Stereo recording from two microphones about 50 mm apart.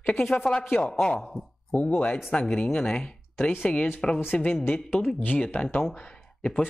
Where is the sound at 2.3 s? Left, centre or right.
Left.